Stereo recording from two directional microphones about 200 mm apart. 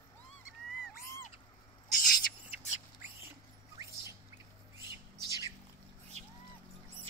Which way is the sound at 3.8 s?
15° right (ahead or behind).